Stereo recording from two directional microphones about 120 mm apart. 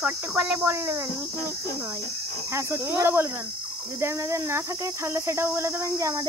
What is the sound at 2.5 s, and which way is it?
Cricket, 20° right (ahead or behind).